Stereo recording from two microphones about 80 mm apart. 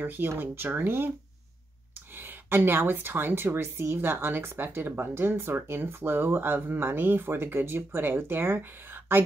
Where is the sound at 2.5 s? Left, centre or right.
Right.